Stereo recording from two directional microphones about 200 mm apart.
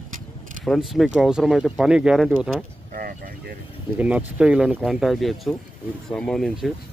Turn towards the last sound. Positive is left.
turn(degrees=0)  # may be behind; listen again after turning